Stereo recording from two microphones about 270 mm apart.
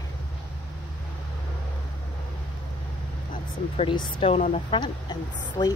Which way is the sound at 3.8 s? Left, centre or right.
Centre.